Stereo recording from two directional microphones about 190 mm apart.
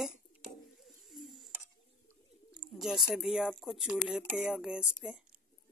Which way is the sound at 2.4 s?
Centre (ahead or behind).